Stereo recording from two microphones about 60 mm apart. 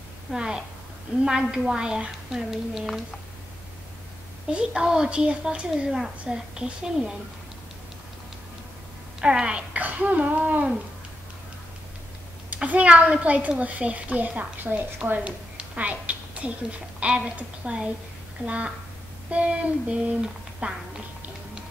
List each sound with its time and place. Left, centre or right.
0.3 s a woman's voice: centre
4.5 s a woman's voice: centre
9.2 s speech: centre
12.5 s a woman's voice: right